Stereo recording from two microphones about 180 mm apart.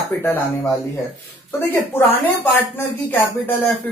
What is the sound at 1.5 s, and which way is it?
Speech, 10° left (ahead or behind).